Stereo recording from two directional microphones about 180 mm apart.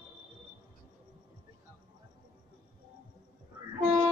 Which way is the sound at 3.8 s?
40° right (ahead or behind).